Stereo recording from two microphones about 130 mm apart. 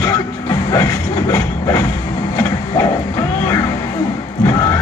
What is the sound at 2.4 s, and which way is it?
Printer, 25° left (ahead or behind).